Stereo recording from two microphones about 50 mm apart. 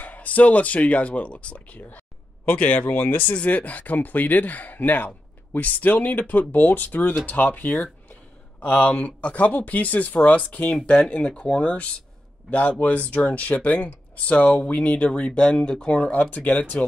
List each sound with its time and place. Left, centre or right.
0.0 s speech: left
1.8 s speech: left; by 16.1 s centre
16.1 s speech: left